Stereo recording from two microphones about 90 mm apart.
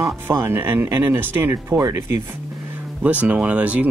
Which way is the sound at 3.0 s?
15° right (ahead or behind).